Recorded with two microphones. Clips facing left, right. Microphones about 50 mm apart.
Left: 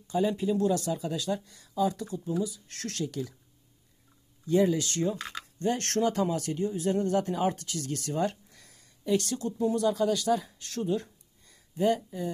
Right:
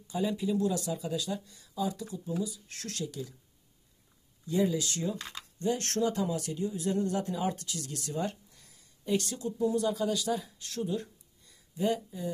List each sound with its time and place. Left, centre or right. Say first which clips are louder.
0.1 s speech: left 4 dB; left
4.5 s speech: left 4 dB; left
5.6 s speech: left 2 dB; left
10.4 s a sound: left 3 dB; left